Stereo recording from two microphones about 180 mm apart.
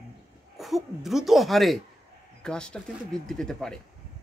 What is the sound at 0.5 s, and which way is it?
A woman's voice, centre (ahead or behind).